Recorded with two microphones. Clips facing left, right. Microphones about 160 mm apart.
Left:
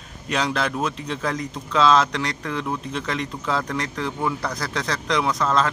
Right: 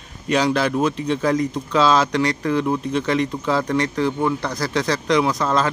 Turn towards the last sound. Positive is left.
turn(degrees=-5)  # may be behind; listen again after turning